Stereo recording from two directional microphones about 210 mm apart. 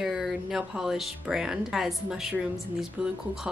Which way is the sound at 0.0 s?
Centre (ahead or behind).